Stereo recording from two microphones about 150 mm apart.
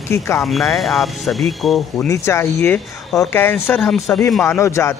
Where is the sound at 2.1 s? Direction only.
20° left (ahead or behind); by 4.2 s centre (ahead or behind).